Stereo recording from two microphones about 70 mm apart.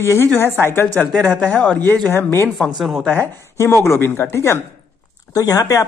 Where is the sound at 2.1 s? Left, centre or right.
Left.